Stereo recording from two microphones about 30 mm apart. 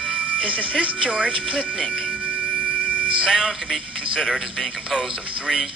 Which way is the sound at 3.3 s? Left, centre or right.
Centre.